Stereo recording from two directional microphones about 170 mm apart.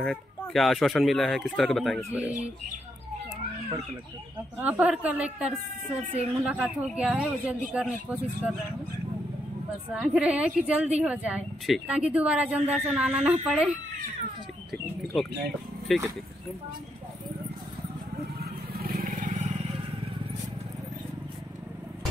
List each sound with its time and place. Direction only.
0.0 s a woman's voice: 5° left (ahead or behind)
4.6 s a woman's voice: 10° right (ahead or behind)
9.9 s a woman's voice: 5° right (ahead or behind)
15.9 s speech: centre (ahead or behind)
18.4 s vehicle: 60° right (ahead or behind)